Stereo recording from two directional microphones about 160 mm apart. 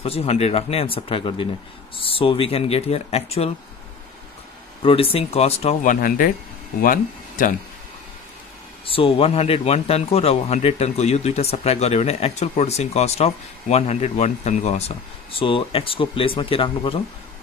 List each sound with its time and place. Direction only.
0.0 s a man's voice: 40° left (ahead or behind)
4.8 s a man's voice: 35° left (ahead or behind)
5.9 s speech: 60° left (ahead or behind)
8.8 s a man's voice: 35° left (ahead or behind)